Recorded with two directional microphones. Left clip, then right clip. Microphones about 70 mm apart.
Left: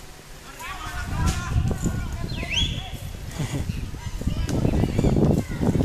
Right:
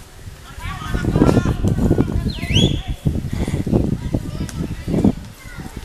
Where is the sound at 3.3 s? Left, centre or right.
Centre.